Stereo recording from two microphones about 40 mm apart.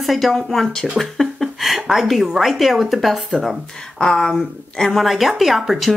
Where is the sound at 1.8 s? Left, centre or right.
Centre.